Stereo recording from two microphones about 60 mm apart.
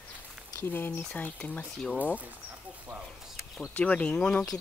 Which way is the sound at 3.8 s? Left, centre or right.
Left.